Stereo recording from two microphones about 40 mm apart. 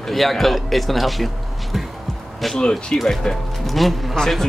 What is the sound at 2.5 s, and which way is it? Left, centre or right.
Speech, centre.